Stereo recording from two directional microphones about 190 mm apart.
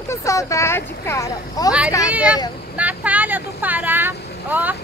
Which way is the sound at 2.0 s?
5° right (ahead or behind).